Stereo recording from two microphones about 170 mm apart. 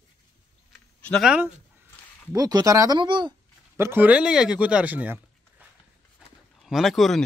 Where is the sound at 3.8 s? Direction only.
10° right (ahead or behind).